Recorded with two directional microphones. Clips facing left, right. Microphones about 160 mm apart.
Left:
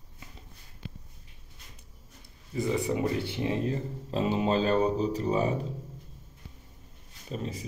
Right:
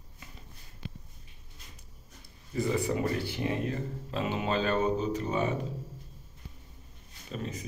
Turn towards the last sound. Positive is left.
turn(degrees=30)  # may be behind; listen again after turning